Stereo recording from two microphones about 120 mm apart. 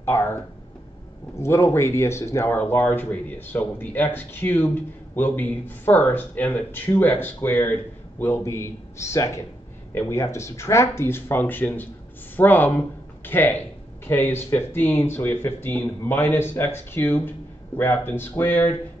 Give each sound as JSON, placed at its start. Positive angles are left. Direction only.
{"t": 0.0, "sound": "a man's voice", "side_deg": 20}